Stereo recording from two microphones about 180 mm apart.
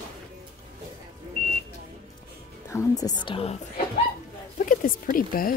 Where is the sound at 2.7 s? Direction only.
15° left (ahead or behind); by 3.8 s 35° left (ahead or behind).